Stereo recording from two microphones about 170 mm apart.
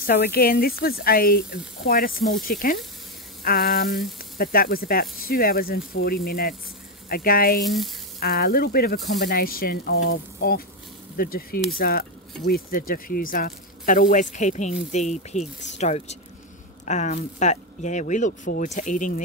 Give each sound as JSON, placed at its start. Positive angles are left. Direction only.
{"t": 0.0, "sound": "speech", "side_deg": 70}
{"t": 7.6, "sound": "frying", "side_deg": 0}
{"t": 8.2, "sound": "speech", "side_deg": 60}